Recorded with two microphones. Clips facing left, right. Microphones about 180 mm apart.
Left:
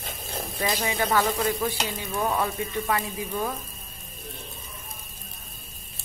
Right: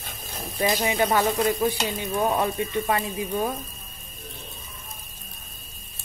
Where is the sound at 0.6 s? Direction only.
25° right (ahead or behind).